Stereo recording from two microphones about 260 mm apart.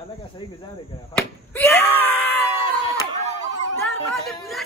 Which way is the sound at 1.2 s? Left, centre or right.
Centre.